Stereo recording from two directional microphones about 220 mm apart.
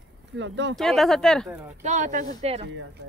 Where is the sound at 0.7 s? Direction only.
Centre (ahead or behind).